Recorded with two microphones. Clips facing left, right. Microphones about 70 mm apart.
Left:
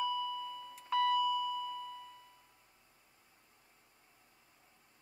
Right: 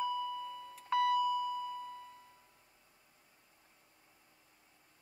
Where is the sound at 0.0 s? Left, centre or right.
Right.